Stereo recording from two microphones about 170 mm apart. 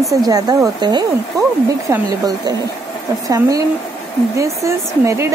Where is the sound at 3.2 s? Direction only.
20° right (ahead or behind).